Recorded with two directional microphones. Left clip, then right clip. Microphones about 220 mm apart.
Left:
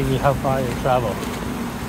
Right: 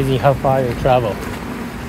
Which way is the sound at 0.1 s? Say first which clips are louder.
Right 5 dB; 30° right (ahead or behind).